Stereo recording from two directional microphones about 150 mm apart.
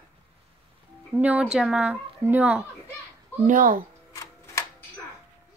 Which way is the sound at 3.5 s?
65° right (ahead or behind).